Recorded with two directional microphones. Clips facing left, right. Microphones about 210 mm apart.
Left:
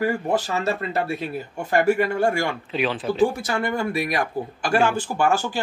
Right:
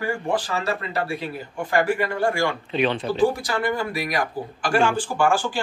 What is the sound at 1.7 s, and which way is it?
Speech, 25° left (ahead or behind).